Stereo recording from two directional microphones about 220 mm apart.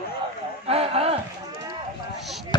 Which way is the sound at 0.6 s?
25° right (ahead or behind).